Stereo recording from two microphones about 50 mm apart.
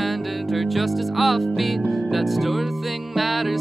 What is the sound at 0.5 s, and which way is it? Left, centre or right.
Music, centre.